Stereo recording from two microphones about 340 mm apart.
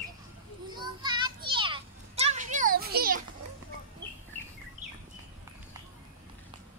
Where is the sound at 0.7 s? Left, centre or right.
Centre.